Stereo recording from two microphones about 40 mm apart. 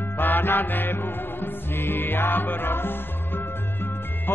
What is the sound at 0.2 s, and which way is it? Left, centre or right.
Music, left.